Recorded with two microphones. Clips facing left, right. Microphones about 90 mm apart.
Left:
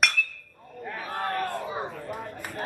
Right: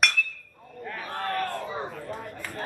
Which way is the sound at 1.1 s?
20° left (ahead or behind).